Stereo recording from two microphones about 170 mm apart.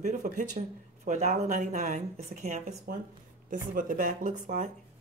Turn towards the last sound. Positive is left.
turn(degrees=-45)  # may be behind; listen again after turning